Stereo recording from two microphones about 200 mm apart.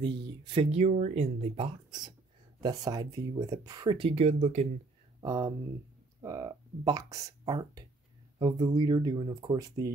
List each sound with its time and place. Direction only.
0.0 s speech: 25° right (ahead or behind)
5.2 s speech: 15° right (ahead or behind)